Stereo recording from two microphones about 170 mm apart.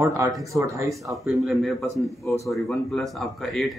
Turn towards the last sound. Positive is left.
turn(degrees=0)  # may be behind; listen again after turning